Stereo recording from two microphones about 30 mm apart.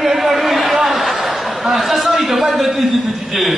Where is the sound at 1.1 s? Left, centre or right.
Centre.